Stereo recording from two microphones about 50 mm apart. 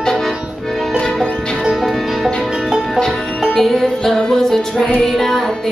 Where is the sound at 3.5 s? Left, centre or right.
Centre.